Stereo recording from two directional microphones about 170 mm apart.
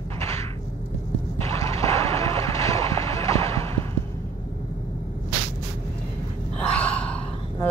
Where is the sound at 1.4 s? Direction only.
20° left (ahead or behind).